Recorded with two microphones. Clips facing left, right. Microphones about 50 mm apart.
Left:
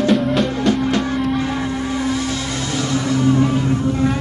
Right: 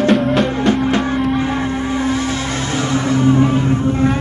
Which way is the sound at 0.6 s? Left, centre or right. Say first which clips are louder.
Right 2 dB; right.